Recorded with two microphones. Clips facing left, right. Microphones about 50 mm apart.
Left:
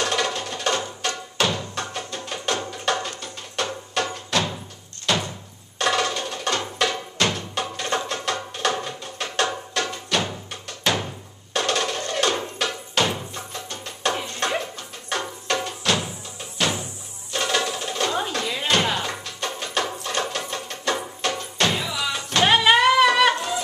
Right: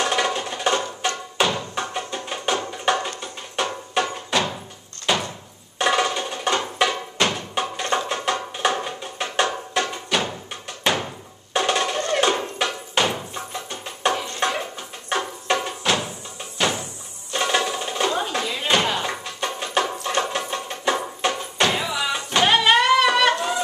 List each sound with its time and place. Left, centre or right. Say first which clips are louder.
0.0 s music: right 2 dB; centre
5.1 s door: right 1 dB; centre
5.8 s music: right 2 dB; centre
11.5 s a sound: right 2 dB; centre
12.2 s music: even; centre
22.4 s a sound: left 1 dB; centre